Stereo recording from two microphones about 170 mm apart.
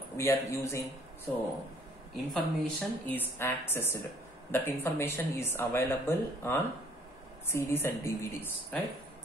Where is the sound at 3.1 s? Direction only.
10° left (ahead or behind).